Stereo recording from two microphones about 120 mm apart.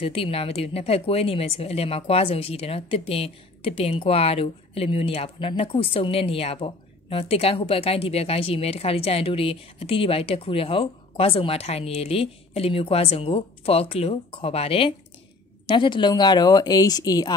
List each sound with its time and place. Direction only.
0.0 s speech: 50° left (ahead or behind); by 17.3 s 30° left (ahead or behind)